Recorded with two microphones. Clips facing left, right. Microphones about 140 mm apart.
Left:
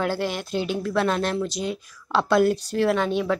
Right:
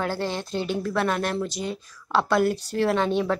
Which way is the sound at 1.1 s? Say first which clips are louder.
Left 2 dB; 25° left (ahead or behind).